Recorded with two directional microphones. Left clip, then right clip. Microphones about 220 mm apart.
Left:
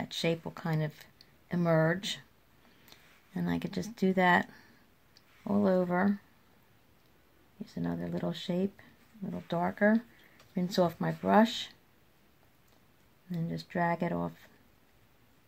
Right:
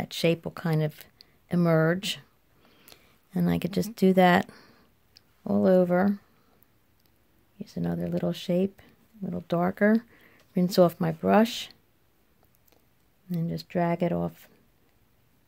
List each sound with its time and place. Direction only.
0.0 s speech: 50° right (ahead or behind)
2.8 s a sound: 50° right (ahead or behind)
7.6 s speech: 50° right (ahead or behind)
13.3 s speech: 45° right (ahead or behind)